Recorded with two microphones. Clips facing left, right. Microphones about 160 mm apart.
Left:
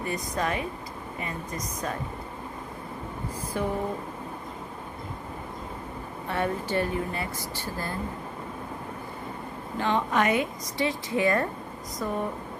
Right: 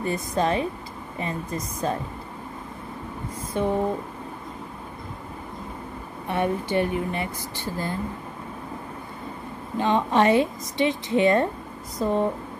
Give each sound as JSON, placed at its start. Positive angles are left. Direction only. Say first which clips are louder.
{"t": 0.0, "sound": "a woman's voice", "louder": "right 5 dB", "side_deg": -25}
{"t": 3.6, "sound": "a woman's voice", "louder": "right 5 dB", "side_deg": -20}
{"t": 6.2, "sound": "speech", "louder": "right 4 dB", "side_deg": -20}
{"t": 9.8, "sound": "a woman's voice", "louder": "right 4 dB", "side_deg": -20}